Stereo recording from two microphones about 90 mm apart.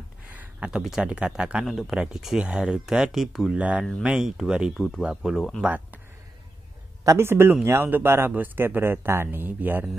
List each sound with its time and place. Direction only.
0.3 s speech: 15° right (ahead or behind)
3.5 s speech: 15° right (ahead or behind)
7.1 s speech: 30° right (ahead or behind)